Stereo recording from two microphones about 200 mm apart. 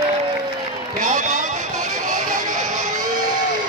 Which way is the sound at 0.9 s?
40° right (ahead or behind).